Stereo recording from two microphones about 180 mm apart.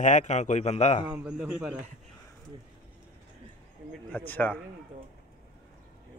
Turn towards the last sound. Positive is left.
turn(degrees=10)  # may be behind; listen again after turning